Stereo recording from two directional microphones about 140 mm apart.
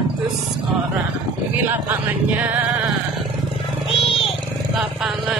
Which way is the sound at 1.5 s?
10° right (ahead or behind).